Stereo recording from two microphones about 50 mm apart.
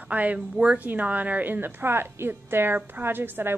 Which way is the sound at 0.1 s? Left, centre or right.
Right.